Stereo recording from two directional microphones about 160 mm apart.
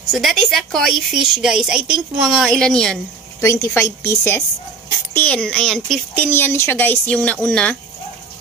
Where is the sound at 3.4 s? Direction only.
20° left (ahead or behind).